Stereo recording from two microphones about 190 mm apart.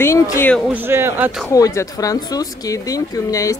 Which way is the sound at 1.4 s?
15° left (ahead or behind).